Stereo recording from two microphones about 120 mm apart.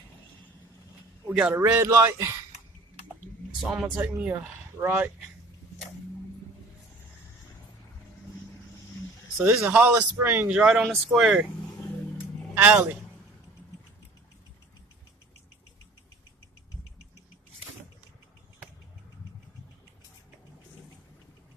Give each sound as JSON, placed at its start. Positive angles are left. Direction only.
{"t": 1.2, "sound": "a sound", "side_deg": -10}
{"t": 1.5, "sound": "speech", "side_deg": -20}
{"t": 3.5, "sound": "speech", "side_deg": -5}
{"t": 9.4, "sound": "speech", "side_deg": -25}
{"t": 12.5, "sound": "speech", "side_deg": -15}